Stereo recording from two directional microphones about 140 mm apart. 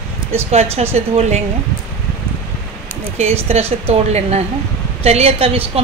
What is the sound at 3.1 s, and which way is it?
A woman's voice, 45° right (ahead or behind).